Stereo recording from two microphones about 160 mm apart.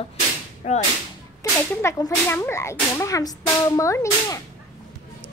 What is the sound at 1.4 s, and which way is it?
Whip, 20° left (ahead or behind).